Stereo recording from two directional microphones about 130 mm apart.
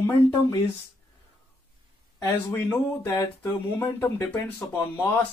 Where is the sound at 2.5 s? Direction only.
15° left (ahead or behind).